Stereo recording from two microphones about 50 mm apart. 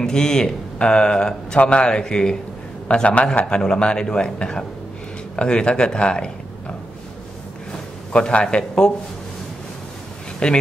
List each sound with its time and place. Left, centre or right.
0.0 s speech: centre
8.1 s speech: left
10.4 s speech: centre